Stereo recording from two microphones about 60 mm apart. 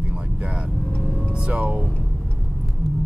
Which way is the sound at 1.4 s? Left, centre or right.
Centre.